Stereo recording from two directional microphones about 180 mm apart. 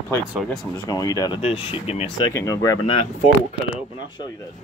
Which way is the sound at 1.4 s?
35° left (ahead or behind).